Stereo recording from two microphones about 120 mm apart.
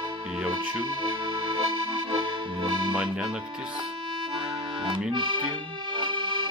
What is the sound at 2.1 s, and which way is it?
Accordion, 40° right (ahead or behind).